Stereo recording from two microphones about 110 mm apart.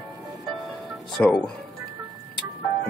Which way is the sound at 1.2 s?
15° left (ahead or behind).